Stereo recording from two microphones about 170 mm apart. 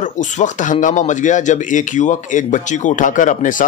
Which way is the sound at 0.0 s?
45° left (ahead or behind).